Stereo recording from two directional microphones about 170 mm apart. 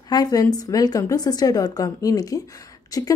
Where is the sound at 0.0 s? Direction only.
25° left (ahead or behind).